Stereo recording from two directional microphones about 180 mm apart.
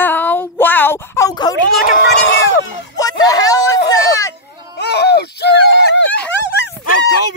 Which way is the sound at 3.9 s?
15° left (ahead or behind).